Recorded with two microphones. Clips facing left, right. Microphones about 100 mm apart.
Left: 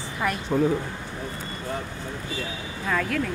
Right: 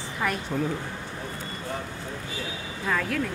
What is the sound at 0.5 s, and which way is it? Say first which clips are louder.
Speech: left 8 dB; 30° left (ahead or behind).